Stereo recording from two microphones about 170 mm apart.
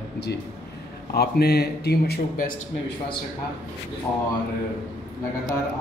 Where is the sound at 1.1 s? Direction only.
70° left (ahead or behind).